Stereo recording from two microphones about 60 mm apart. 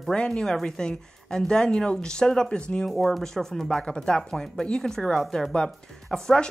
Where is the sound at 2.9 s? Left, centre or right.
Centre.